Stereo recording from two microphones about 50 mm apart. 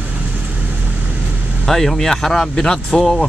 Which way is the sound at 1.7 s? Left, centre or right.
Centre.